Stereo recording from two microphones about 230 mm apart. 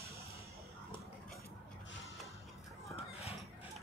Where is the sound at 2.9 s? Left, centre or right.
Left.